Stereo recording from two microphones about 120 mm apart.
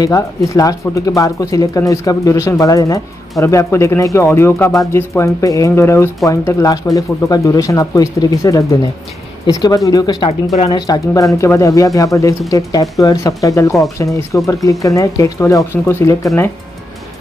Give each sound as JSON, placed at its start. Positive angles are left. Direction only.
{"t": 0.0, "sound": "speech", "side_deg": 30}